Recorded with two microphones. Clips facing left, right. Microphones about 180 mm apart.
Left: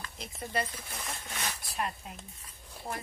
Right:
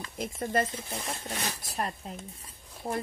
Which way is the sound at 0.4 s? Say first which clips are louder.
Right 5 dB; 45° right (ahead or behind).